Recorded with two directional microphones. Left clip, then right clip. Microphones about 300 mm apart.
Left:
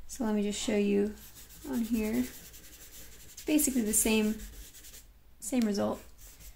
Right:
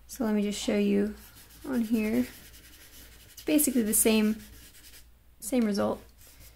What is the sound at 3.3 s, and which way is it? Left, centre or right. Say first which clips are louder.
Speech: right 3 dB; centre.